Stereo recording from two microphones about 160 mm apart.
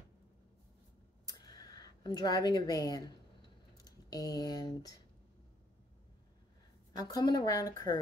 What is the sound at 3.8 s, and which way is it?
Speech, 25° left (ahead or behind).